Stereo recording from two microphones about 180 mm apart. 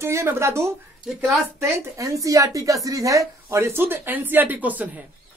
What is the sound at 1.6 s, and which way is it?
A woman's voice, 20° right (ahead or behind).